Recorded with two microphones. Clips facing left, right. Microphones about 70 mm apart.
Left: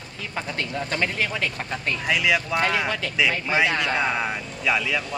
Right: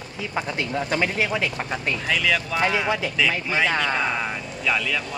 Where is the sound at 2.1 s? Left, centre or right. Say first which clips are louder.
Left 2 dB; centre.